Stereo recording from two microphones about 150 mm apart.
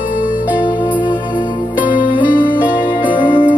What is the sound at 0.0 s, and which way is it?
Music, 65° left (ahead or behind).